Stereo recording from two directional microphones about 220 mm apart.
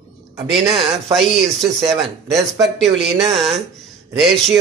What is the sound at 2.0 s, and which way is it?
Speech, 15° right (ahead or behind).